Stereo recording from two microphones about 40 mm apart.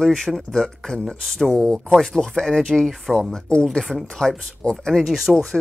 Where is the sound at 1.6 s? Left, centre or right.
Left.